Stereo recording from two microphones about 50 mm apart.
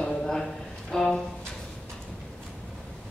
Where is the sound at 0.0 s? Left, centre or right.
Centre.